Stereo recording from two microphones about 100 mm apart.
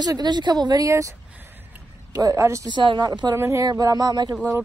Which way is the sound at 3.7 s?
40° right (ahead or behind).